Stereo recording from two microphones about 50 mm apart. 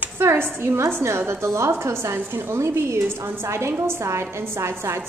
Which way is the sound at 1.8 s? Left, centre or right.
Right.